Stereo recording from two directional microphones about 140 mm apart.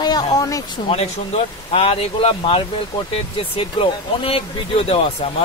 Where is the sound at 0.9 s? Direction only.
45° left (ahead or behind).